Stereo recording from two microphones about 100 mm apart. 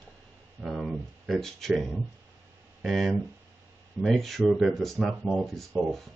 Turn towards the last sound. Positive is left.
turn(degrees=0)  # may be behind; listen again after turning